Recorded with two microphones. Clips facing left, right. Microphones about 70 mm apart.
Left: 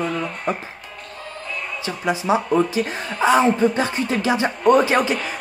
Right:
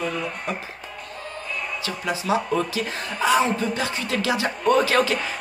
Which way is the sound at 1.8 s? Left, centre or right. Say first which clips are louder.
Left 7 dB; left.